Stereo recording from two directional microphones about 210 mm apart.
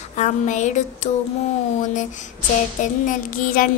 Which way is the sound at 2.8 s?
40° left (ahead or behind).